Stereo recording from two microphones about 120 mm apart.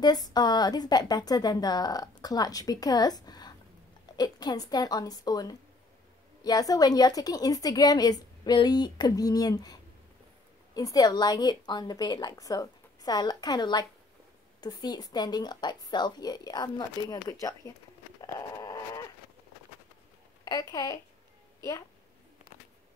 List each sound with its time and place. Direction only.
0.0 s a woman's voice: 35° left (ahead or behind)
18.2 s a sound: 30° left (ahead or behind)
20.4 s a woman's voice: 30° left (ahead or behind)